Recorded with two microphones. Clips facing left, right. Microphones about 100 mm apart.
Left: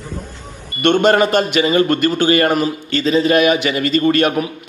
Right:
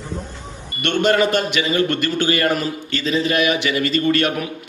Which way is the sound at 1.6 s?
40° left (ahead or behind).